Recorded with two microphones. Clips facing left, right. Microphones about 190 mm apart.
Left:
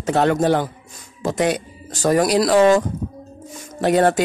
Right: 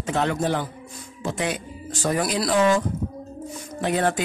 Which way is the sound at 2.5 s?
70° left (ahead or behind).